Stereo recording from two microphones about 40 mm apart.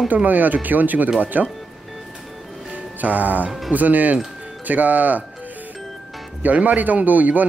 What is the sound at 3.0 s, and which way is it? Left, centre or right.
A man's voice, right.